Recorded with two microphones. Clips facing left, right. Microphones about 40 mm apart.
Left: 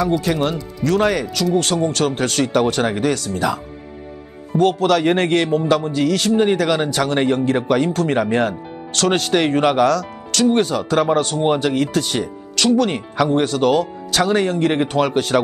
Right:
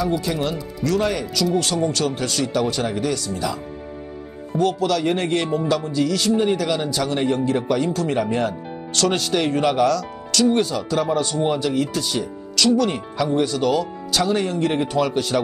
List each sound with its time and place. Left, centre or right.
0.2 s speech: left
4.6 s speech: left